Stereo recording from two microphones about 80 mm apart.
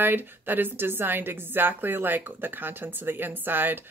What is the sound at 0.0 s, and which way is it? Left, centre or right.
A woman's voice, right.